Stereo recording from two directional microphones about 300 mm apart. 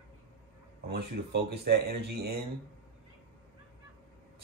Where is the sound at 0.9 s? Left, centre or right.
Right.